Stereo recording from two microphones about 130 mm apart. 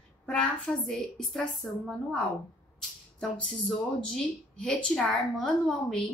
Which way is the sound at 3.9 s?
10° left (ahead or behind).